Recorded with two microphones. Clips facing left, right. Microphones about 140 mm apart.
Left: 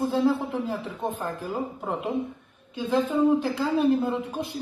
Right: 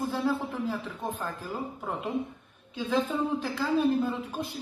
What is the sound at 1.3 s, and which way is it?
Speech, 65° left (ahead or behind).